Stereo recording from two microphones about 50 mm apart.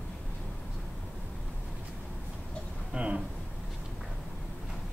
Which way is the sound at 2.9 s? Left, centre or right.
Right.